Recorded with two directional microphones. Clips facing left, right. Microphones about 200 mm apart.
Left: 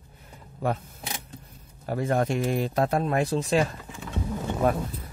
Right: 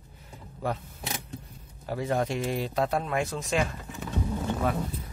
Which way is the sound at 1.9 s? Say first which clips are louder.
Left 3 dB; 50° left (ahead or behind).